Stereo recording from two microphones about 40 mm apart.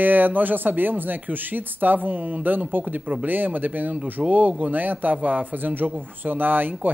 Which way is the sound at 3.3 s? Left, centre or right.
Right.